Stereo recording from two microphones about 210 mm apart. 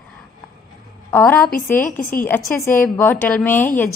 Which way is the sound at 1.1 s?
10° left (ahead or behind).